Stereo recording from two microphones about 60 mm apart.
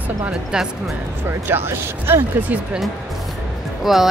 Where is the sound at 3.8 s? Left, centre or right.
Centre.